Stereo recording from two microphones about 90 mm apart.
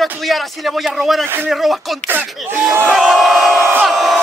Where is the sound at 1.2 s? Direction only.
25° right (ahead or behind).